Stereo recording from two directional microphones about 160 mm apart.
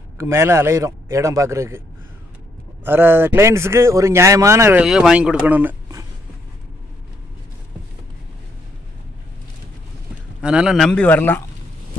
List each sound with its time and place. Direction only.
0.2 s a man's voice: 15° right (ahead or behind)
2.8 s a man's voice: 15° right (ahead or behind)
4.8 s a man's voice: 5° right (ahead or behind)
10.4 s speech: 5° right (ahead or behind); by 11.4 s 10° left (ahead or behind)